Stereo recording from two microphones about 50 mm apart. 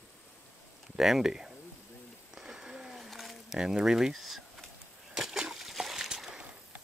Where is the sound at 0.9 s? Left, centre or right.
Centre.